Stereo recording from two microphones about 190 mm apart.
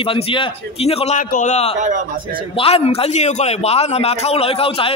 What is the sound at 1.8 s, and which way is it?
Speech, 45° right (ahead or behind).